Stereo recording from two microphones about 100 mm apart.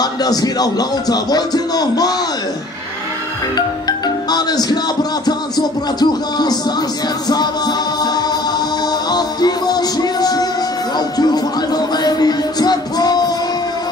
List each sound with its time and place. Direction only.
0.0 s speech: 40° left (ahead or behind)
3.5 s music: 40° left (ahead or behind)